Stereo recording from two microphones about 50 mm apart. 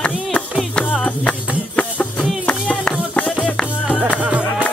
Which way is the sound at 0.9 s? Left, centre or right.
Left.